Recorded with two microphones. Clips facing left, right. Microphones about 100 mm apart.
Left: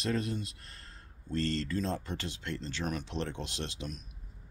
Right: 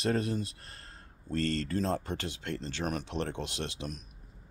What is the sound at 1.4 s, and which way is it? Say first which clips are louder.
Speech: right 1 dB; 30° left (ahead or behind).